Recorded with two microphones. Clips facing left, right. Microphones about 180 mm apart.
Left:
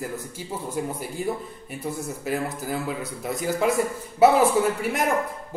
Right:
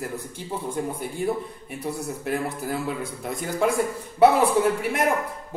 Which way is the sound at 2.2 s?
Centre (ahead or behind).